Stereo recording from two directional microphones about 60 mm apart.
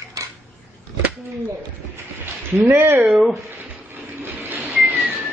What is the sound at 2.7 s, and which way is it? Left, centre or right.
Speech, right.